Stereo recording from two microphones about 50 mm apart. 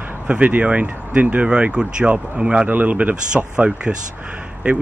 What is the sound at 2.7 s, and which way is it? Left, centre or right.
Speech, right.